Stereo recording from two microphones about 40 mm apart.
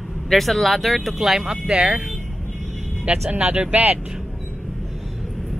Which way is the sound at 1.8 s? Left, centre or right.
Right.